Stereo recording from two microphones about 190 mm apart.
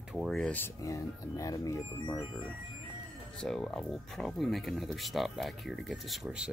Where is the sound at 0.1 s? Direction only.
Centre (ahead or behind); by 2.2 s 15° left (ahead or behind).